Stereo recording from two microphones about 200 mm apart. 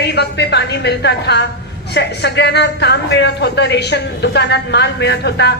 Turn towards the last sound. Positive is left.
turn(degrees=55)  # may be behind; listen again after turning